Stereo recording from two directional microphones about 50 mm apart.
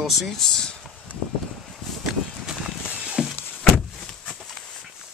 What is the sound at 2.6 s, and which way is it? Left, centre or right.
Walk, right.